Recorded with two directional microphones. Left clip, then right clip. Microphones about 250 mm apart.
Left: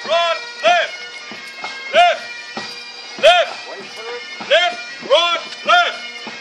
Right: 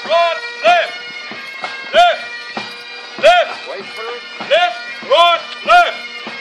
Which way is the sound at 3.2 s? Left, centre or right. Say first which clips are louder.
Right 2 dB; left.